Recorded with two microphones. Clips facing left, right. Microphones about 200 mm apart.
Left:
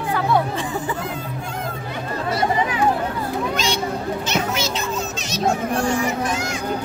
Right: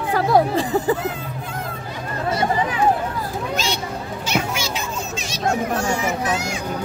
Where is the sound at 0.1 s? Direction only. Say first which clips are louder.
Right 4 dB; 35° right (ahead or behind).